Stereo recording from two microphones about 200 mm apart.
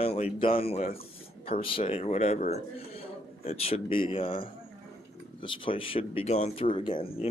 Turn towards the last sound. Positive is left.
turn(degrees=30)  # may be behind; listen again after turning